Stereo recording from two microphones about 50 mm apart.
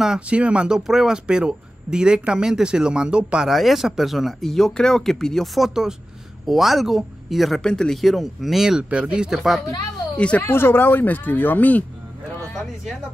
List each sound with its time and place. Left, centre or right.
0.3 s speech: right
3.4 s speech: centre
4.5 s speech: centre
7.6 s speech: centre
10.1 s speech: left
10.4 s speech: left